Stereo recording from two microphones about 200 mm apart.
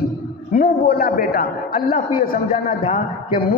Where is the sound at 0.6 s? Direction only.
45° left (ahead or behind).